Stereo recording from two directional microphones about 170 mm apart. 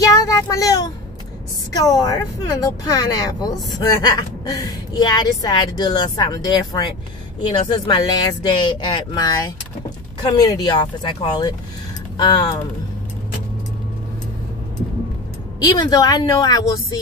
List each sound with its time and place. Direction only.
0.0 s child singing: 20° left (ahead or behind)
1.7 s a woman's voice: 20° left (ahead or behind)
15.6 s a woman's voice: 25° left (ahead or behind)